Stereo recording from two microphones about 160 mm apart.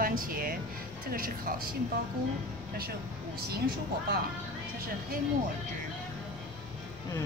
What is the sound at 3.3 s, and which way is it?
Speech, 75° right (ahead or behind).